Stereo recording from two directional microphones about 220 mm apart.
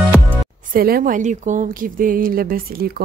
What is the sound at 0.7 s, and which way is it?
Speech, 40° right (ahead or behind).